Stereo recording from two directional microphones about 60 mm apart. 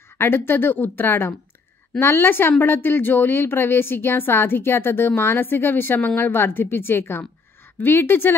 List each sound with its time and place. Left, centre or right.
0.2 s speech: left